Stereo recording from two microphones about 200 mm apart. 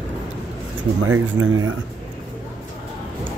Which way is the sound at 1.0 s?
80° right.